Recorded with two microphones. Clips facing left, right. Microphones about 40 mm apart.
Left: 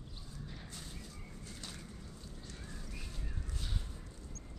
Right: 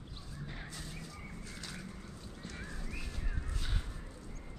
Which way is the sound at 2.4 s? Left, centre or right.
Right.